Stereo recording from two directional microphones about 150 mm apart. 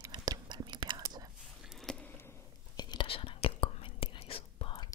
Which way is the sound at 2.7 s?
30° left (ahead or behind).